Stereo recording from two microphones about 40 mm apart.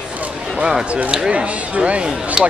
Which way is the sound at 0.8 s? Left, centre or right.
Right.